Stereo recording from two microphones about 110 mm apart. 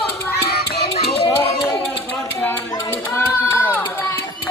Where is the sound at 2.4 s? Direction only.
20° left (ahead or behind).